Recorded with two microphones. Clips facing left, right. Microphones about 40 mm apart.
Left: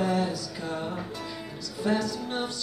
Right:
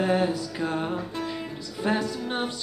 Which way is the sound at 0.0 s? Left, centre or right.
Right.